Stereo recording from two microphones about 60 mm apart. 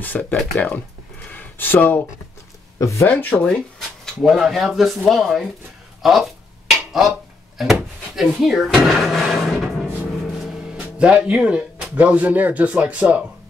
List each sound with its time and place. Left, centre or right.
0.0 s speech: left
1.3 s a sound: left
2.8 s speech: left
3.1 s speech: left
3.4 s speech: centre
4.2 s speech: centre
6.0 s dishes: centre
8.2 s speech: centre
8.6 s drawer open or close: centre
10.1 s music: centre
10.8 s speech: centre